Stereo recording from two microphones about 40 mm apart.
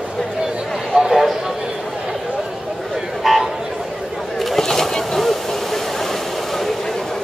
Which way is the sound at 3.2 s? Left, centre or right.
Centre.